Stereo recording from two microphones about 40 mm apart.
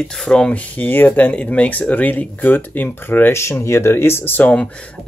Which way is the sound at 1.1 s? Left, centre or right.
Left.